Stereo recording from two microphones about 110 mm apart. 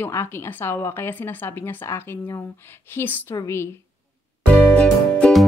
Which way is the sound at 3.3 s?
25° left (ahead or behind).